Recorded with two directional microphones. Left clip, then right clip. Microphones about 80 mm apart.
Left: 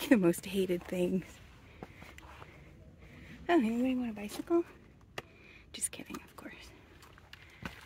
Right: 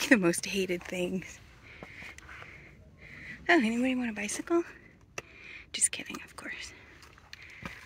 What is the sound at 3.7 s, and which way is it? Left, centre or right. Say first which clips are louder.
Speech: right 3 dB; centre.